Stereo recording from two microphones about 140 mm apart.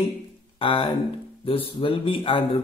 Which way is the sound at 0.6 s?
40° left (ahead or behind).